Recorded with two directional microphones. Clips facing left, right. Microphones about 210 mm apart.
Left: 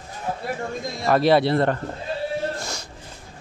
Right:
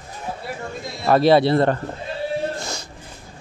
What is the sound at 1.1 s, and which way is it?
Speech, 30° right (ahead or behind).